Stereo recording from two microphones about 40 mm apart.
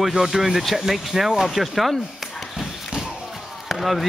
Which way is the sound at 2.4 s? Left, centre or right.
Centre.